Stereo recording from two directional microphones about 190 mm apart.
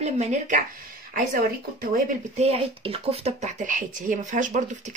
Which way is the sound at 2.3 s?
30° right (ahead or behind).